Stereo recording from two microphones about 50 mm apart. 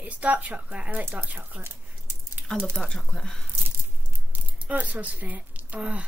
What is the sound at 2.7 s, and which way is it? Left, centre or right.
Speech, centre.